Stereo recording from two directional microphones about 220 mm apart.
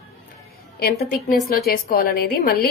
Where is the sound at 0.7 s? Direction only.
45° left (ahead or behind).